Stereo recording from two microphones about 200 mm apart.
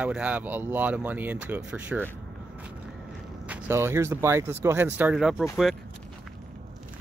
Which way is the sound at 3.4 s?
10° right (ahead or behind).